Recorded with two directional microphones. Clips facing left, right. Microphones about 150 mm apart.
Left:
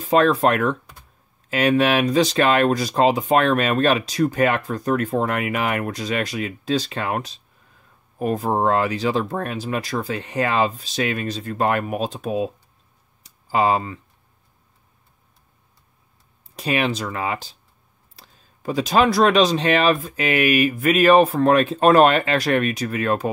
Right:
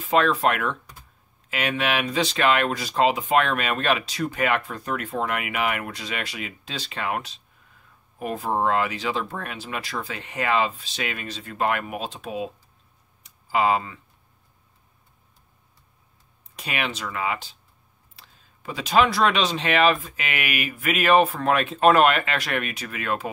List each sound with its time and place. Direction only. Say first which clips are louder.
0.0 s speech: left 4 dB; 40° left (ahead or behind)
13.2 s a sound: left 3 dB; 35° left (ahead or behind)
16.4 s speech: left 8 dB; 35° left (ahead or behind)